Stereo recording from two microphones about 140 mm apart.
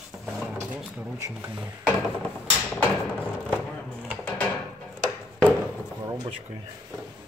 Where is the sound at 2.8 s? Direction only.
5° left (ahead or behind).